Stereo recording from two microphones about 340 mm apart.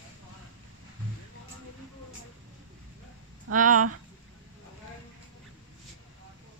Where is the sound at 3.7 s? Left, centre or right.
Right.